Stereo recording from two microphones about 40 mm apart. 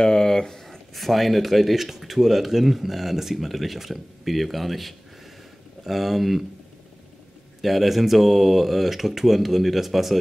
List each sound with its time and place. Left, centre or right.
0.0 s a sound: centre
0.9 s speech: centre
7.6 s speech: centre